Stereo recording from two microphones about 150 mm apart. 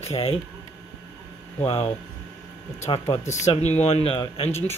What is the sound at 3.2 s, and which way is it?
Speech, 50° left (ahead or behind).